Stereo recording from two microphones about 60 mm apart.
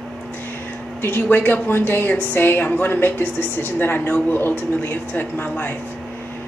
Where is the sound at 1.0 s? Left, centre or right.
Left.